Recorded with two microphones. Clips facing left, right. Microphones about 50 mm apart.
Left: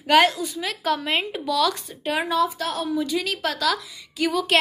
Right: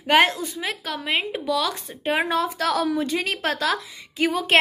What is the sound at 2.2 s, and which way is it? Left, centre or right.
Speech, right.